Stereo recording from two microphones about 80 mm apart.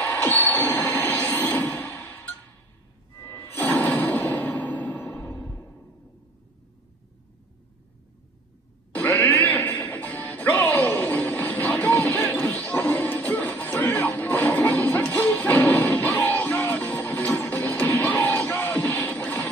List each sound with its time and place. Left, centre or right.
0.0 s music: centre
8.9 s music: left